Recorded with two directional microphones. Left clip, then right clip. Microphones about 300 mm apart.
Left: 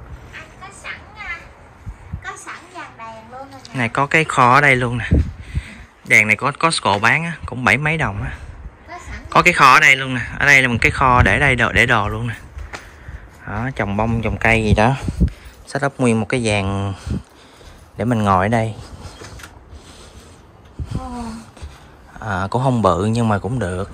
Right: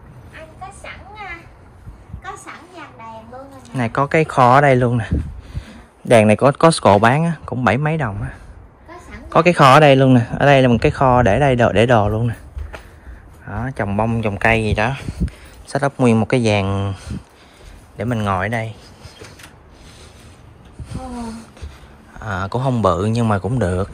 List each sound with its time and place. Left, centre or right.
0.3 s vehicle: right
3.7 s speech: centre
13.5 s speech: centre
20.9 s a sound: centre
22.1 s speech: centre